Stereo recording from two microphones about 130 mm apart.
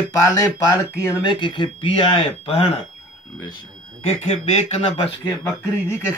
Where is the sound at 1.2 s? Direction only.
40° left (ahead or behind).